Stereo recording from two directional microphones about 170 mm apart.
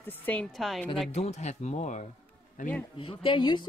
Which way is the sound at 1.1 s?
40° left (ahead or behind).